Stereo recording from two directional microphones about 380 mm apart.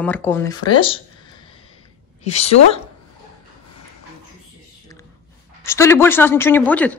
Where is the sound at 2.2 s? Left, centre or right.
Centre.